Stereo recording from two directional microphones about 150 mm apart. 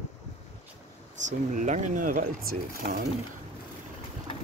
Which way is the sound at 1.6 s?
60° right (ahead or behind).